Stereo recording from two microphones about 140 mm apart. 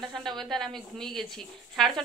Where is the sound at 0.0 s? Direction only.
Centre (ahead or behind).